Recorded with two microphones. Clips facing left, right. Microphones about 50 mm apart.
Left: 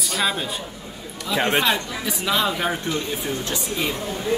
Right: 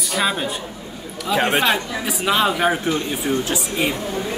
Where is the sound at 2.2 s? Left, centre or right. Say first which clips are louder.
Right 5 dB; right.